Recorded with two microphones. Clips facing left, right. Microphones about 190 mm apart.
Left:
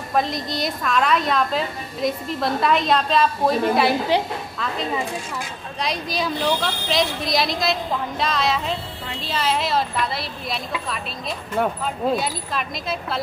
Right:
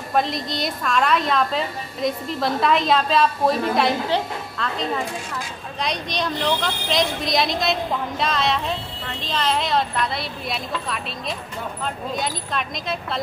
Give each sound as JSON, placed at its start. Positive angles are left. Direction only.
{"t": 0.1, "sound": "a woman's voice", "side_deg": 0}
{"t": 5.8, "sound": "a woman's voice", "side_deg": 5}